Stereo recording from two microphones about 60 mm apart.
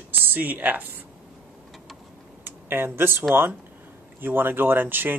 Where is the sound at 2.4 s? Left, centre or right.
Right.